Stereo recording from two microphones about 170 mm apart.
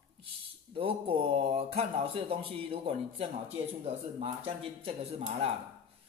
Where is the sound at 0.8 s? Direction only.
35° right (ahead or behind).